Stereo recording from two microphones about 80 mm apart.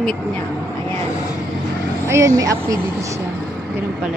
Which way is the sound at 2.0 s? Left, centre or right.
Right.